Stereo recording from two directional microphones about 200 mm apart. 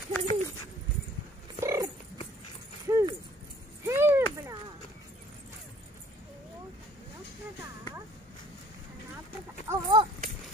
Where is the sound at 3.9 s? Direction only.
10° right (ahead or behind).